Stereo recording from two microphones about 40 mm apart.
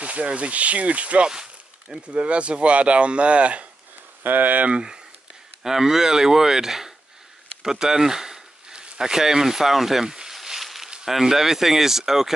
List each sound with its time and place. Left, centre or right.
0.0 s speech: right
1.3 s a sound: centre
2.0 s speech: right
4.2 s speech: right
4.7 s speech: centre
10.3 s a sound: centre
11.1 s speech: centre